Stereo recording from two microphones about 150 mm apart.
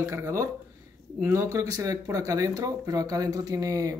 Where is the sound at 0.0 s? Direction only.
20° right (ahead or behind).